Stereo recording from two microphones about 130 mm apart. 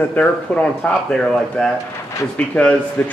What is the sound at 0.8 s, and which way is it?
Speech, 5° left (ahead or behind).